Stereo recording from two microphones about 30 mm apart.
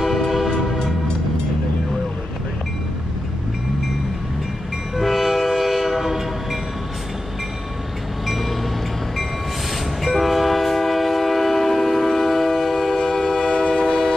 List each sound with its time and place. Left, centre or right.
4.9 s train: centre
8.3 s vehicle: centre
10.0 s train: centre
13.4 s train: left
13.8 s train: centre